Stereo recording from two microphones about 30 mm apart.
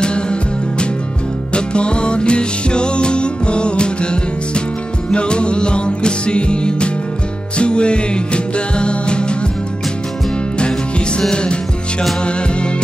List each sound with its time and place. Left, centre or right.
0.0 s music: left
12.2 s music: left